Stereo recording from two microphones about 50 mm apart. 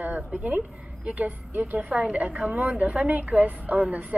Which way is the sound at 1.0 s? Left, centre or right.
Right.